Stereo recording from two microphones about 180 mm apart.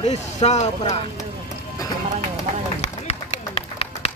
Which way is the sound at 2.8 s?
35° left (ahead or behind).